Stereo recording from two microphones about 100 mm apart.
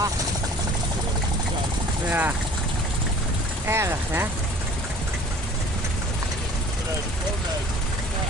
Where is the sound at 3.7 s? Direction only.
25° right (ahead or behind).